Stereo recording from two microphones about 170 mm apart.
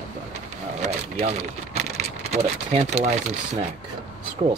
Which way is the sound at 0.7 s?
40° right (ahead or behind).